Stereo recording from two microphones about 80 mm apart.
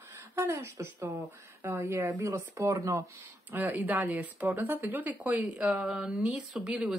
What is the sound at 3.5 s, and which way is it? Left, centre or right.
Speech, right.